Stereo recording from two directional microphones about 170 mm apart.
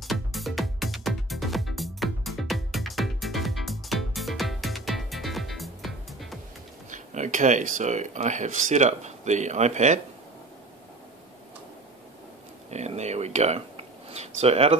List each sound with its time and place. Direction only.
0.0 s music: centre (ahead or behind)
6.9 s speech: 50° right (ahead or behind)
12.7 s speech: 40° right (ahead or behind)